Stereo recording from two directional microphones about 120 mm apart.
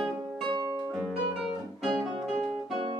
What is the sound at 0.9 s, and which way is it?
Guitar, centre (ahead or behind).